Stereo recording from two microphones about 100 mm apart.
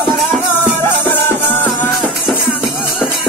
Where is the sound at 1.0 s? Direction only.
20° left (ahead or behind).